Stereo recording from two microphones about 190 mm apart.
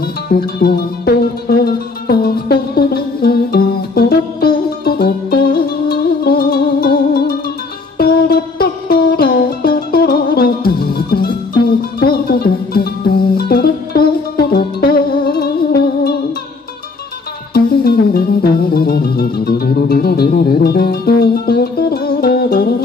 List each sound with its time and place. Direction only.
0.0 s music: 55° left (ahead or behind)
17.6 s music: 50° left (ahead or behind)